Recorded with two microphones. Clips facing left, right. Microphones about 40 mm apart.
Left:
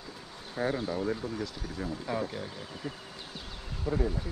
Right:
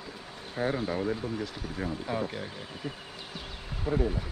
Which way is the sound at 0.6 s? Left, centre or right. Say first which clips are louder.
Right 1 dB; centre.